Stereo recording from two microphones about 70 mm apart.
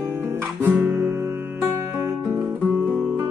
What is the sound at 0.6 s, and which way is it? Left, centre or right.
Guitar, right.